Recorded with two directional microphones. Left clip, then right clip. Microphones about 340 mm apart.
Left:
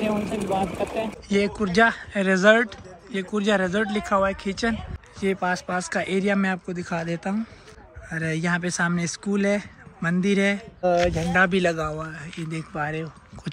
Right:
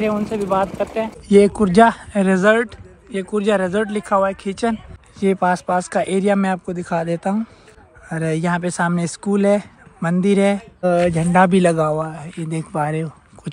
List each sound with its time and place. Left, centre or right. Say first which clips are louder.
1.3 s speech: right 10 dB; centre
10.8 s speech: right 4 dB; centre